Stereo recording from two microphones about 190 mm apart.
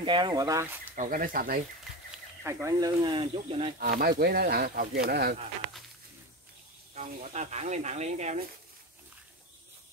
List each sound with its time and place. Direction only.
0.0 s speech: 25° right (ahead or behind)
0.9 s speech: 45° right (ahead or behind)
1.9 s a sound: centre (ahead or behind)
2.4 s speech: 15° right (ahead or behind)
3.8 s speech: 55° right (ahead or behind)
7.0 s speech: 40° right (ahead or behind)